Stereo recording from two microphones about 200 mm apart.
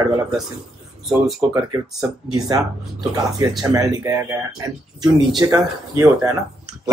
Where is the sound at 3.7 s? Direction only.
15° right (ahead or behind).